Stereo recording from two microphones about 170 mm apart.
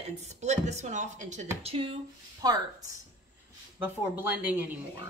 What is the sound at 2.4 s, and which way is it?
Speech, 20° right (ahead or behind).